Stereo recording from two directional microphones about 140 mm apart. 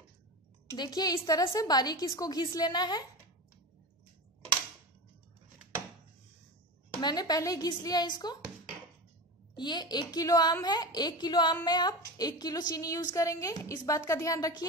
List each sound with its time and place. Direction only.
0.7 s a woman's voice: 30° left (ahead or behind)
7.0 s a woman's voice: 30° left (ahead or behind)
9.6 s a woman's voice: 30° left (ahead or behind)